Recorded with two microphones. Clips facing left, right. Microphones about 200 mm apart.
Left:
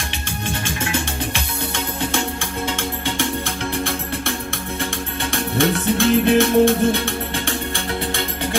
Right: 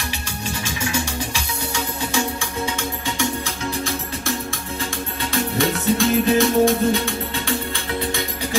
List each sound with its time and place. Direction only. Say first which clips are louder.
0.5 s music: left 2 dB; 55° left (ahead or behind)
5.6 s music: left 2 dB; 55° left (ahead or behind)